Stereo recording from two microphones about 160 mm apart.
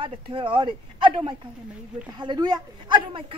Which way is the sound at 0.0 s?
30° right (ahead or behind).